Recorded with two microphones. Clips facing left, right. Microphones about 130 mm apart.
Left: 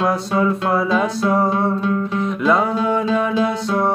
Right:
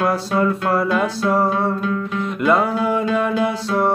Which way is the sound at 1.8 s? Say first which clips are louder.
Left 2 dB; 25° left (ahead or behind).